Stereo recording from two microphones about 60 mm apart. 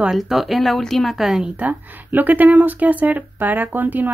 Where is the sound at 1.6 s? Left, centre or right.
Right.